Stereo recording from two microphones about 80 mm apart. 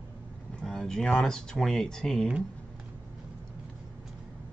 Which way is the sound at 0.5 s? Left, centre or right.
Centre.